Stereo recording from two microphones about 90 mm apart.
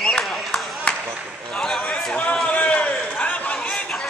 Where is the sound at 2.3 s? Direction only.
15° left (ahead or behind).